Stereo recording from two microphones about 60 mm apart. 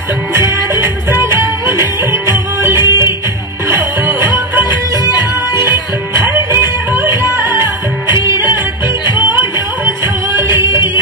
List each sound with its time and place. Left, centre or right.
0.3 s music: right
4.0 s music: right
8.1 s music: right
9.1 s music: right